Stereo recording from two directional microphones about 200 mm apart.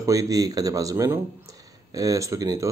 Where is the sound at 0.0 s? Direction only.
15° right (ahead or behind).